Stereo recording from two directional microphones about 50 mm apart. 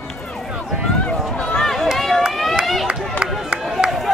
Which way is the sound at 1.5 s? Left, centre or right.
Centre.